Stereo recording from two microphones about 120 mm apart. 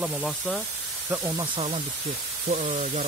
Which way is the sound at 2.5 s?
90° right.